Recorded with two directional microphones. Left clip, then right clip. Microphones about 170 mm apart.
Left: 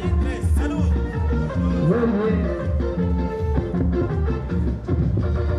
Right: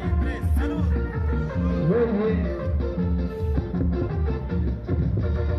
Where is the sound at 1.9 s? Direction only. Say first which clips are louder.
Left 1 dB; 60° left (ahead or behind).